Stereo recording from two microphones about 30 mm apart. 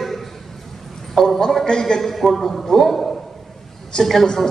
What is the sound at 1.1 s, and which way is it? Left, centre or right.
Speech, centre.